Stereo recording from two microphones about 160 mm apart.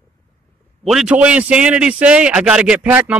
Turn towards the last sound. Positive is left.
turn(degrees=-10)  # may be behind; listen again after turning